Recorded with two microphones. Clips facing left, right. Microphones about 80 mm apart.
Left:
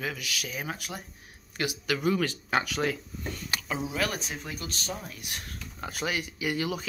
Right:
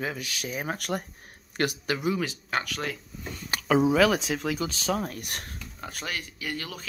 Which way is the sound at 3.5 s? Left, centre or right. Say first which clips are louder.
Right 2 dB; right.